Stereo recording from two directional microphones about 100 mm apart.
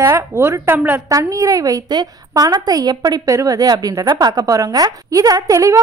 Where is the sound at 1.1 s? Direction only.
35° right (ahead or behind).